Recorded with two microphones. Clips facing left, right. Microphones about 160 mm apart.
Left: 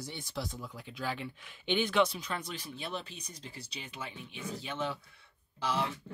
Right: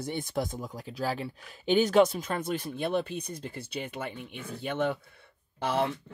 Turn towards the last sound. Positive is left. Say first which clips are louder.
# right 5 dB
turn(degrees=-55)  # may be behind; listen again after turning